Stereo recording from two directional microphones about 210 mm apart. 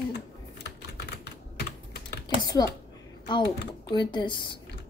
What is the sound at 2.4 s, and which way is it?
Speech, 20° left (ahead or behind).